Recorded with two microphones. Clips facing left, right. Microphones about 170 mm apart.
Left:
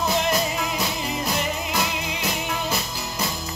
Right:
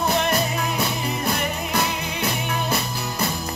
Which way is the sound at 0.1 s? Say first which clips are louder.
Right 1 dB; 60° right (ahead or behind).